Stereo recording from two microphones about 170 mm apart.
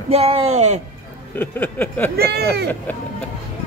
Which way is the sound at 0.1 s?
35° right (ahead or behind).